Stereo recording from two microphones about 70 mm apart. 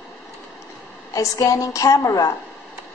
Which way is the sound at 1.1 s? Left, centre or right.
Left.